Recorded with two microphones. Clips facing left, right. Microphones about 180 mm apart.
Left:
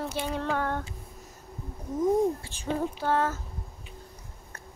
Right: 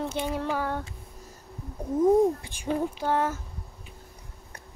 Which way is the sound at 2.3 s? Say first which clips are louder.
Right 2 dB; 15° right (ahead or behind).